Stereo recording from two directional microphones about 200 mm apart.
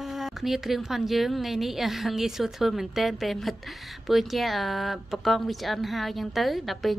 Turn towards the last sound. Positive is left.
turn(degrees=0)  # may be behind; listen again after turning